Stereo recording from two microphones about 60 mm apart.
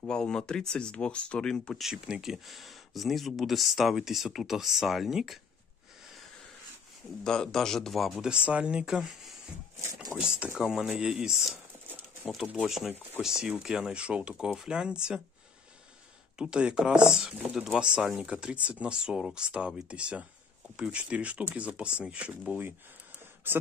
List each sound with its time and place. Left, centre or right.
0.1 s speech: centre
1.8 s speech: centre
7.4 s speech: centre
8.2 s speech: centre
11.9 s a sound: right
12.6 s speech: centre
16.3 s speech: centre
22.5 s speech: right